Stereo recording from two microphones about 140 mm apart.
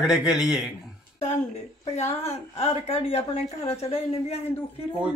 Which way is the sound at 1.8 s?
50° left (ahead or behind).